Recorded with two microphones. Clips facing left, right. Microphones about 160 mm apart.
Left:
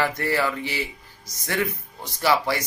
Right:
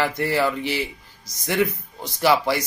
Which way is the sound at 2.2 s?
15° right (ahead or behind).